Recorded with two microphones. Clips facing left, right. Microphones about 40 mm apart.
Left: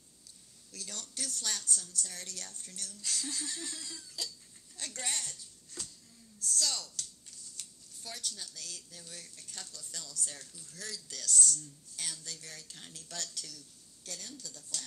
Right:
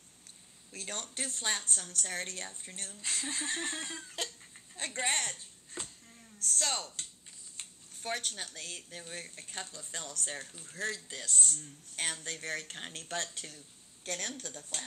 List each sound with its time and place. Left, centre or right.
0.7 s a woman's voice: right